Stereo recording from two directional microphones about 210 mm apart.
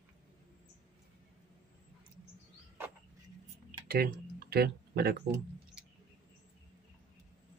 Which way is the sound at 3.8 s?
45° right (ahead or behind).